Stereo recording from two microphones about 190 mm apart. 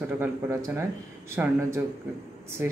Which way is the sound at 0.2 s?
15° right (ahead or behind).